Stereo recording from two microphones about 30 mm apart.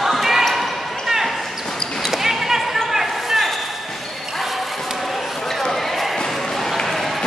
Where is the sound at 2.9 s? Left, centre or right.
Centre.